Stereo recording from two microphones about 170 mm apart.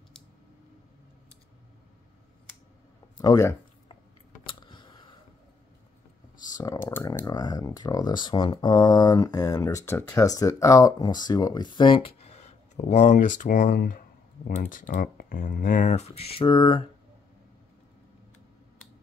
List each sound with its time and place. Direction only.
3.2 s speech: 20° left (ahead or behind)
4.5 s a sound: 25° left (ahead or behind)
6.6 s clicking: 15° left (ahead or behind)
7.2 s speech: 20° left (ahead or behind)